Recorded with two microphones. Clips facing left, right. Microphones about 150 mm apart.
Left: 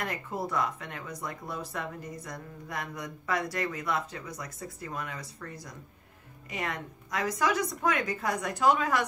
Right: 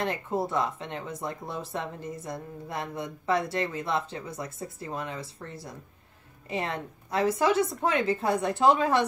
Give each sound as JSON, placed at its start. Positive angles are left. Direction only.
{"t": 0.0, "sound": "speech", "side_deg": -25}